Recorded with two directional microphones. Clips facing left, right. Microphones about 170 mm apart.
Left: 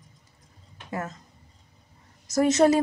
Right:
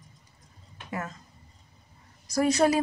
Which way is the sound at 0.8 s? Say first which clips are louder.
Left 2 dB; 30° left (ahead or behind).